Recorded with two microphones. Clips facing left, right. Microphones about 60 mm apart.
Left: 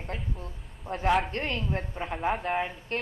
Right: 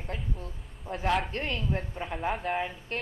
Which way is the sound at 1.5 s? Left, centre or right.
Centre.